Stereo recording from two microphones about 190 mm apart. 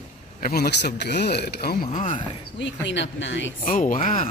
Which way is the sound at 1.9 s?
45° left (ahead or behind).